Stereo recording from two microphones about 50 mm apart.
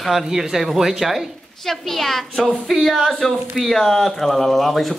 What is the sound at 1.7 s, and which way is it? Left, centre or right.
A woman's voice, centre.